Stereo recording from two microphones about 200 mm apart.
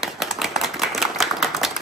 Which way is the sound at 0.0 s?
Centre (ahead or behind).